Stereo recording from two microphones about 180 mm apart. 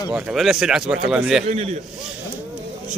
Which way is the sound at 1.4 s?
35° right (ahead or behind).